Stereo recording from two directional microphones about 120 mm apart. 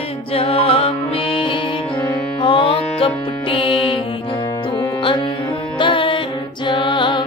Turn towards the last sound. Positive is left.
turn(degrees=40)  # may be behind; listen again after turning